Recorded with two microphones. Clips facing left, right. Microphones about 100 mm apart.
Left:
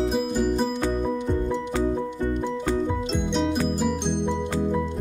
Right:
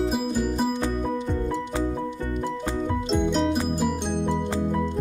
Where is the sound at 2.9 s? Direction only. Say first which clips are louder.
Right 2 dB; centre (ahead or behind).